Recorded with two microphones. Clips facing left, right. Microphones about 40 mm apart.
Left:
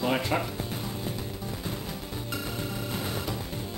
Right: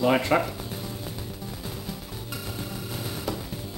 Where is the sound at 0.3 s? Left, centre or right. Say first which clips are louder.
Right 6 dB; right.